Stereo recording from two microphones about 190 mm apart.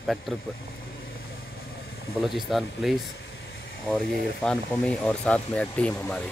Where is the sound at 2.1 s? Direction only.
Centre (ahead or behind).